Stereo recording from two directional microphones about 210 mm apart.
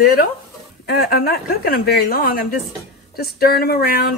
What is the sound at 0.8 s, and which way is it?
Speech, 45° left (ahead or behind).